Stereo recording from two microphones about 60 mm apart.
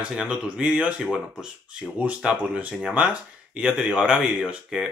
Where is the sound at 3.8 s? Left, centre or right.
Centre.